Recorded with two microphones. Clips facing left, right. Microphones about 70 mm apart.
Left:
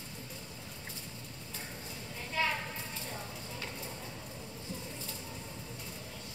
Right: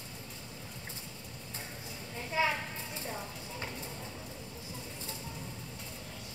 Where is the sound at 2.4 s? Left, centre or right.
Centre.